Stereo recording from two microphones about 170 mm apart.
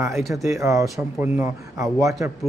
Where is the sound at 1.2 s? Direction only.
15° right (ahead or behind).